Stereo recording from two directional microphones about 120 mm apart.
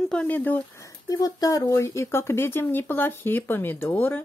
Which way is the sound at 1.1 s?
30° left (ahead or behind).